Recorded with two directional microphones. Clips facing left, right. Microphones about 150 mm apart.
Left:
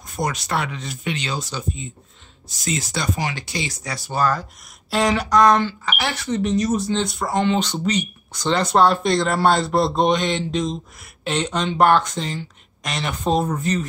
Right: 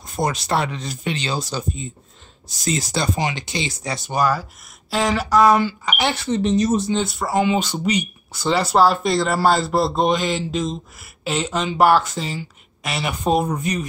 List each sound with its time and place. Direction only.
0.0 s speech: 30° right (ahead or behind)
3.3 s speech: 20° right (ahead or behind)
6.9 s speech: 5° right (ahead or behind)